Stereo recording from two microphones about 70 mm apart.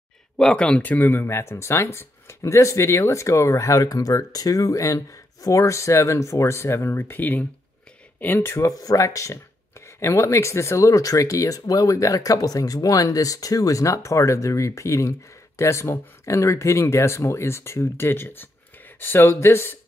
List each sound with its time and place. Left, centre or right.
0.4 s speech: centre
0.9 s speech: left
8.6 s speech: left